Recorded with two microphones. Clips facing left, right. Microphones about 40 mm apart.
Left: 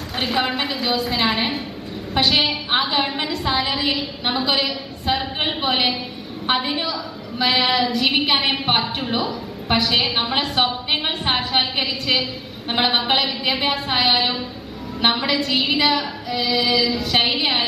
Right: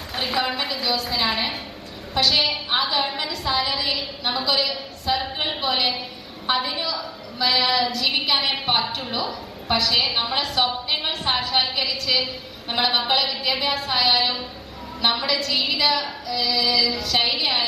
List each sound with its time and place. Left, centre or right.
0.1 s a woman's voice: centre
9.9 s a woman's voice: centre
10.9 s a woman's voice: left
11.3 s a woman's voice: centre
11.7 s a woman's voice: left